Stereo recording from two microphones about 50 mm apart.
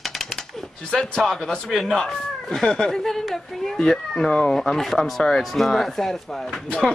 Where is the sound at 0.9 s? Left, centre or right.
Centre.